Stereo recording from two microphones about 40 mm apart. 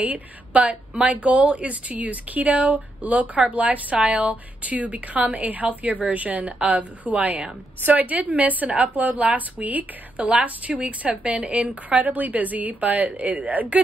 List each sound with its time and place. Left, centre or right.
0.0 s speech: right